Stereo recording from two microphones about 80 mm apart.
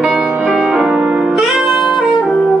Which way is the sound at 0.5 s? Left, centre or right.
Centre.